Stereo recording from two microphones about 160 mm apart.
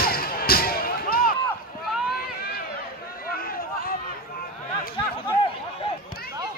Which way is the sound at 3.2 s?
65° left (ahead or behind).